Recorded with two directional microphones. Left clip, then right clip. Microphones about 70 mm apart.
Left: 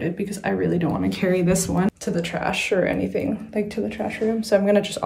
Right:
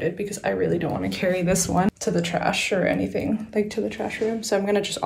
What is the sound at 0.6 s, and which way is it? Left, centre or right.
Speech, left.